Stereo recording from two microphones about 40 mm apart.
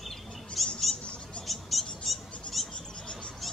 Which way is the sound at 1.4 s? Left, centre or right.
Centre.